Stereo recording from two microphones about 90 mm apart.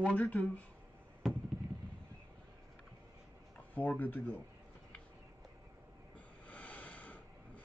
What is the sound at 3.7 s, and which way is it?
Speech, 15° left (ahead or behind).